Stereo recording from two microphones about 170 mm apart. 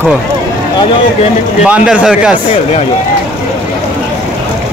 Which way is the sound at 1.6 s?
5° right (ahead or behind).